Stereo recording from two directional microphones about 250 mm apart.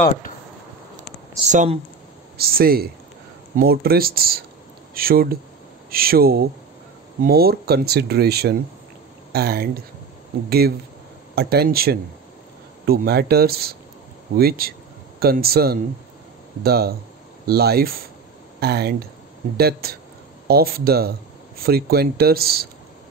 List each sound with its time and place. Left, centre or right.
1.5 s speech: right
11.3 s speech: right